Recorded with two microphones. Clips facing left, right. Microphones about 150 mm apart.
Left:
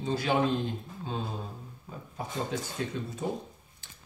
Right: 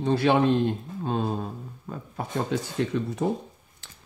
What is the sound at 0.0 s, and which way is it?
Speech, 65° right (ahead or behind).